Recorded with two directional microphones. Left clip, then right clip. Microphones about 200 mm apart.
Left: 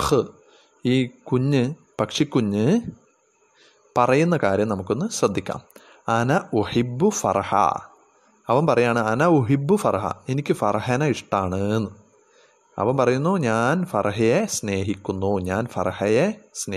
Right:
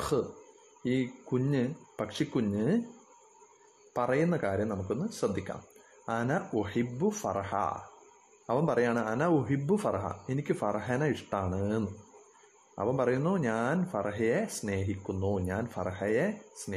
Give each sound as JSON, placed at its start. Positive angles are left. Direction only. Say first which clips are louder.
{"t": 0.8, "sound": "a man's voice", "louder": "left 9 dB", "side_deg": 30}
{"t": 3.9, "sound": "speech", "louder": "left 10 dB", "side_deg": 30}